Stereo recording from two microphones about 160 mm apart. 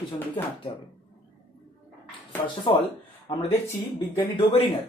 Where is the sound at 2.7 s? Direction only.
30° left (ahead or behind).